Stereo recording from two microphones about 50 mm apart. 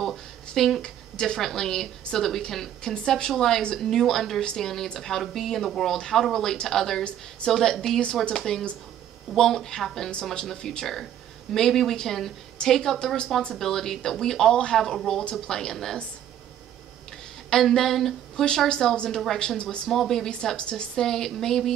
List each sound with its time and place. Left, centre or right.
0.0 s a sound: centre
1.1 s a woman's voice: centre
7.1 s a woman's voice: left
7.5 s a woman's voice: centre
17.5 s a sound: centre
18.7 s a woman's voice: centre
19.9 s a woman's voice: centre